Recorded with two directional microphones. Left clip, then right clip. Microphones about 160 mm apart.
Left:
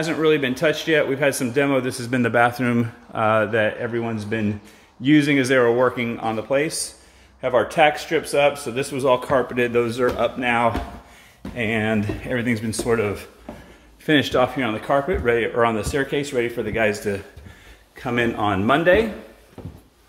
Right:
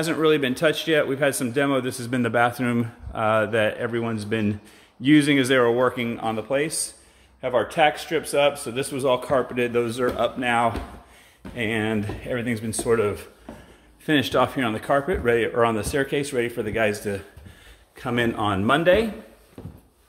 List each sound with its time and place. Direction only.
0.0 s speech: 30° right (ahead or behind)
14.4 s speech: 35° right (ahead or behind); by 19.0 s 15° right (ahead or behind)